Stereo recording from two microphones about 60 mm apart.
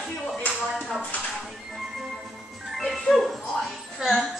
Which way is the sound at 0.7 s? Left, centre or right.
Centre.